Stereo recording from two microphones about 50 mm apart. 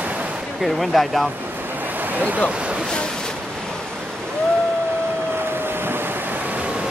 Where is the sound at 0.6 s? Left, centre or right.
Centre.